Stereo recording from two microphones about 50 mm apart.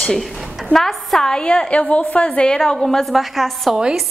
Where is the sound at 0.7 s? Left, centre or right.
Centre.